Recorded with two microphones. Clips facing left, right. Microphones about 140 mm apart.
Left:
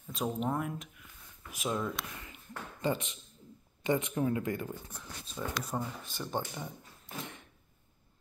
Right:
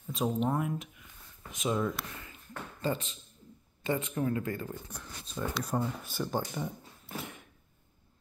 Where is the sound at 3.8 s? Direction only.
20° left (ahead or behind).